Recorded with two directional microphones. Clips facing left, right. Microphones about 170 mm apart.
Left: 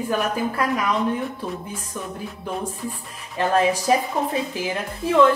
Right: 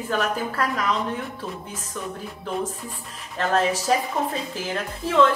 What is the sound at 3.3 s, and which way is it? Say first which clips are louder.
A woman's voice: left 3 dB; 15° left (ahead or behind).